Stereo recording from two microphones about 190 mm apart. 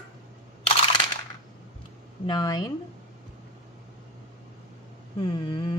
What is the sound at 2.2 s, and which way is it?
Speech, 20° left (ahead or behind).